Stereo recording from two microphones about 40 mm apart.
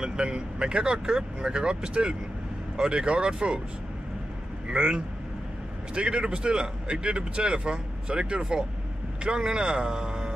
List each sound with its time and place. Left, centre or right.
0.0 s a man's voice: right
4.6 s a man's voice: right